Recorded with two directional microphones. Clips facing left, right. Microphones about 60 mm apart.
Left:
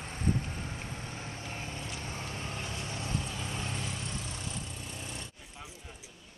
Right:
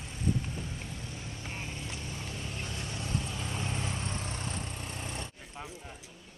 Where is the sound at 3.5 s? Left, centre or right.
Centre.